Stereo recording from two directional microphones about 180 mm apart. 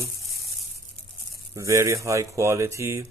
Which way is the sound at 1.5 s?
15° right (ahead or behind).